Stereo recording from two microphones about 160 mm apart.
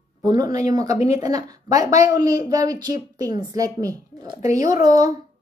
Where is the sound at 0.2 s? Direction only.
25° right (ahead or behind).